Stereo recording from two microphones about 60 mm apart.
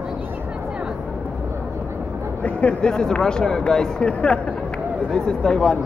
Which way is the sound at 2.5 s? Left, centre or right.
Left.